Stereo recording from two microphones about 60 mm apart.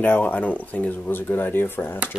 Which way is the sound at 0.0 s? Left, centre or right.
Left.